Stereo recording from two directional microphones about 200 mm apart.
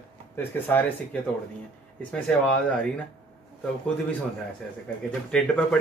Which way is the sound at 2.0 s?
5° left (ahead or behind).